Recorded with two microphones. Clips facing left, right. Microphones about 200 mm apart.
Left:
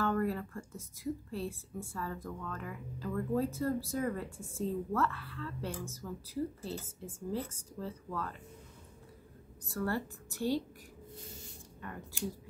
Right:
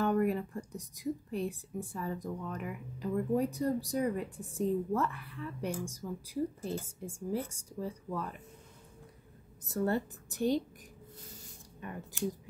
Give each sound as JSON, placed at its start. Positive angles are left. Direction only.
{"t": 0.0, "sound": "a woman's voice", "side_deg": -15}
{"t": 9.7, "sound": "speech", "side_deg": -20}
{"t": 11.8, "sound": "a woman's voice", "side_deg": -20}